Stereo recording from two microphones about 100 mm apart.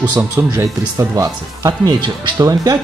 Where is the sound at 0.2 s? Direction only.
30° right (ahead or behind).